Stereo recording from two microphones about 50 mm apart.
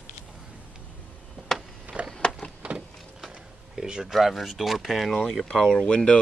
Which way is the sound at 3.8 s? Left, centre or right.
Centre.